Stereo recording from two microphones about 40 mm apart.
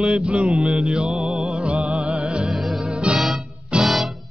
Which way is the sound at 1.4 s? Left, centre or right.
Right.